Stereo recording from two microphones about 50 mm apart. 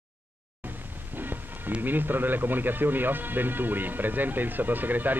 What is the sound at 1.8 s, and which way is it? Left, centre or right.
Speech, right.